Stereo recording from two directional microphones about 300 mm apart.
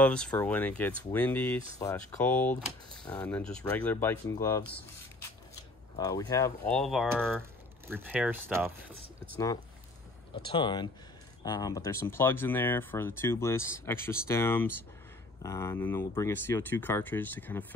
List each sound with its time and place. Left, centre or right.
0.0 s speech: centre
5.9 s speech: centre
6.7 s speech: centre
10.4 s speech: centre